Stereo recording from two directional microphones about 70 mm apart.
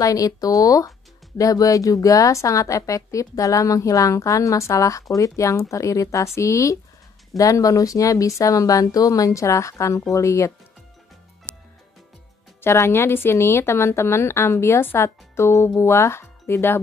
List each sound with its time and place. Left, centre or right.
0.0 s a woman's voice: left
11.5 s music: right
12.6 s a woman's voice: left